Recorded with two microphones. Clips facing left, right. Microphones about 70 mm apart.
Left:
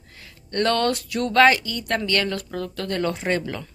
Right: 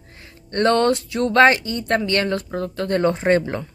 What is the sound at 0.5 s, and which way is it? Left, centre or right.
A woman's voice, right.